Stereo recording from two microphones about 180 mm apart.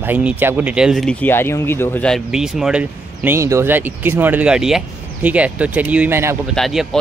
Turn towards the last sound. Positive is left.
turn(degrees=0)  # may be behind; listen again after turning